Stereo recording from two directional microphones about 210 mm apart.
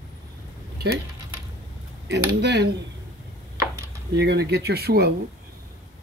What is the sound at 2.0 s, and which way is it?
Speech, 55° right (ahead or behind).